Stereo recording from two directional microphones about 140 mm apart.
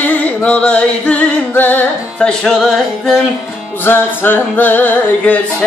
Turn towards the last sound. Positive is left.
turn(degrees=10)  # may be behind; listen again after turning